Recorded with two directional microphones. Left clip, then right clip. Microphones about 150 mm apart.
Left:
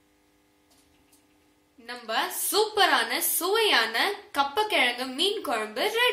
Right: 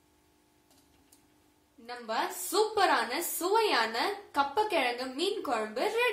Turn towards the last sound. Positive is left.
turn(degrees=25)  # may be behind; listen again after turning